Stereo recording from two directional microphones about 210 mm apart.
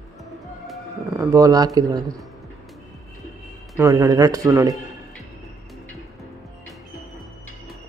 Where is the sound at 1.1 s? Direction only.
15° right (ahead or behind).